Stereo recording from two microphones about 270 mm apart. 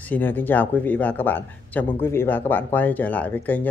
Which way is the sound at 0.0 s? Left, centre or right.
Centre.